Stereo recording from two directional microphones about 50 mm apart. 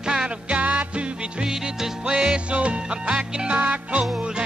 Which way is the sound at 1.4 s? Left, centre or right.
Centre.